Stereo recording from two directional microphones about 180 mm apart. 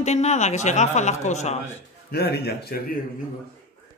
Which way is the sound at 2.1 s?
65° left (ahead or behind).